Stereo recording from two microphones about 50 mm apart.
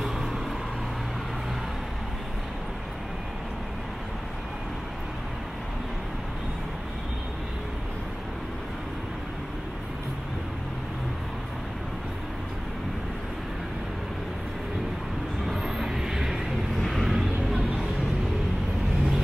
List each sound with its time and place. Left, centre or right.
15.6 s vehicle: centre
16.8 s music: centre